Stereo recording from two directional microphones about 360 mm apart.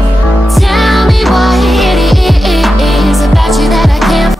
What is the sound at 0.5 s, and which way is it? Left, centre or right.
Music, centre.